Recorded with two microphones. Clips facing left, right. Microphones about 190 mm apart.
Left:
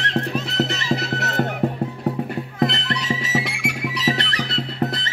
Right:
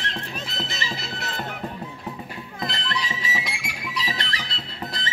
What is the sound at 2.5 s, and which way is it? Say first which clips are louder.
Music: left 7 dB; 65° left (ahead or behind).